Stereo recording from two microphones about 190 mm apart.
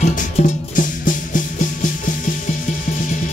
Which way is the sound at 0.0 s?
40° left (ahead or behind).